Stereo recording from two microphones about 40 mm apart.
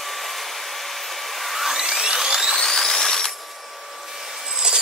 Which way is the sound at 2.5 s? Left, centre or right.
Centre.